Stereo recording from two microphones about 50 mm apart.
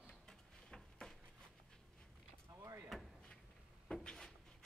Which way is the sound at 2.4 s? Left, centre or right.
Right.